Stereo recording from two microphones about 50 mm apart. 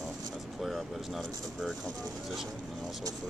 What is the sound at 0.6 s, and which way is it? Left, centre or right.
Speech, centre.